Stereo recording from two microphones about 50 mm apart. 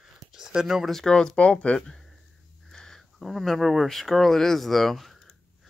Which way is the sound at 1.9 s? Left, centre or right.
Centre.